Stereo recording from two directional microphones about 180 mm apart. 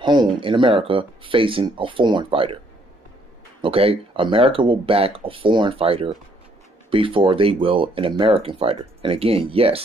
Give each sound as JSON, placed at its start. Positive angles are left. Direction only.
{"t": 0.0, "sound": "speech", "side_deg": -25}
{"t": 3.6, "sound": "speech", "side_deg": -30}